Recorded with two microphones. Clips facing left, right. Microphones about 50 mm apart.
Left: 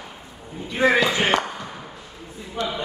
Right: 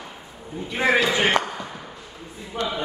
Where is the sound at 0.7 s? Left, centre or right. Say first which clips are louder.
Left 2 dB; centre.